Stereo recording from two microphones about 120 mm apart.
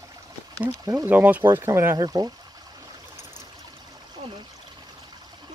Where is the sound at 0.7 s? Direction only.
25° right (ahead or behind).